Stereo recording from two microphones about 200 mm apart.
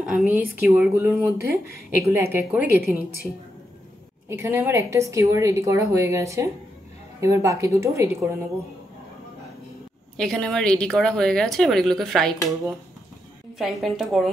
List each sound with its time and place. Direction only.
0.0 s a woman's voice: 5° right (ahead or behind)
1.4 s speech: 45° left (ahead or behind)
2.0 s a woman's voice: 10° right (ahead or behind)
4.3 s a woman's voice: 10° right (ahead or behind)
10.1 s speech: centre (ahead or behind)
13.6 s speech: centre (ahead or behind)